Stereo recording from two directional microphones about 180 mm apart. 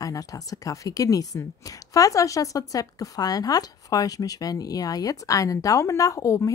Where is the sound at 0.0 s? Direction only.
20° left (ahead or behind).